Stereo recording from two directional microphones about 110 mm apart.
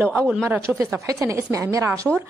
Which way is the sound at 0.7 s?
30° right (ahead or behind).